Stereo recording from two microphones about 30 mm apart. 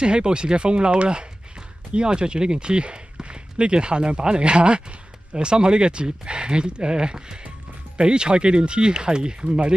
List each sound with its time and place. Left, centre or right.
0.0 s speech: right